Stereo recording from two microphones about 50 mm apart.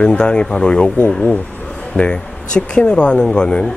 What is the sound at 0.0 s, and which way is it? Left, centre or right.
Speech, centre.